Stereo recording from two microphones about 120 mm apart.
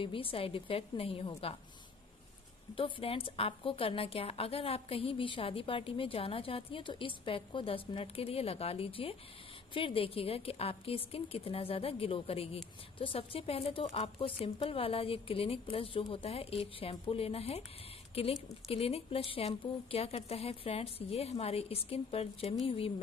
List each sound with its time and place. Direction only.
0.0 s a woman's voice: 50° left (ahead or behind)
2.7 s a woman's voice: 50° left (ahead or behind)